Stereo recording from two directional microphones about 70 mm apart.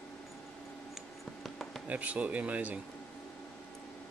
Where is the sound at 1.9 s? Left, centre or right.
Right.